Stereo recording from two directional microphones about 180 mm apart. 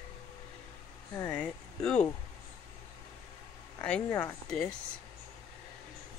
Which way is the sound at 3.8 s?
5° left (ahead or behind).